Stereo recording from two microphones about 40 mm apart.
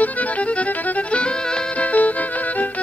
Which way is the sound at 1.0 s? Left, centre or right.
Left.